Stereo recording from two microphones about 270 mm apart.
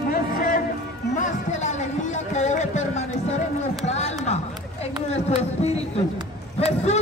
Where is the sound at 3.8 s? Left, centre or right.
Left.